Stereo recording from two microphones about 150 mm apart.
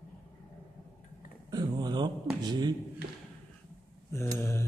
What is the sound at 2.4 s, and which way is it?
Speech, 30° right (ahead or behind).